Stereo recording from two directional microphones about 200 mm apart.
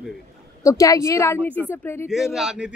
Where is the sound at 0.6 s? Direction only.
15° left (ahead or behind).